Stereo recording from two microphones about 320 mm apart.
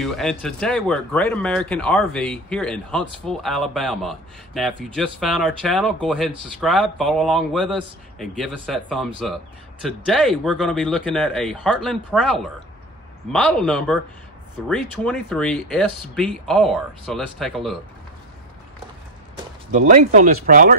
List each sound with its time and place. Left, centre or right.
0.0 s speech: centre
19.7 s speech: right